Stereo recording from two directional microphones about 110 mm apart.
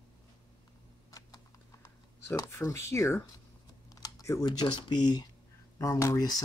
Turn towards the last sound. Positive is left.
turn(degrees=30)  # may be behind; listen again after turning